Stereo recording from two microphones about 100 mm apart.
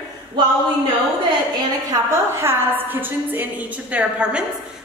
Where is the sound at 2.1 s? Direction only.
25° right (ahead or behind).